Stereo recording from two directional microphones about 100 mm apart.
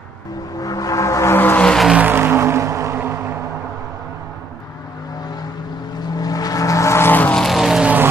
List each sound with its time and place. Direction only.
0.6 s music: 35° left (ahead or behind); by 1.7 s 20° left (ahead or behind)
1.7 s vehicle: centre (ahead or behind)
2.0 s music: 20° right (ahead or behind)
6.1 s vehicle: 40° left (ahead or behind); by 7.3 s 20° left (ahead or behind)
7.3 s vehicle: centre (ahead or behind)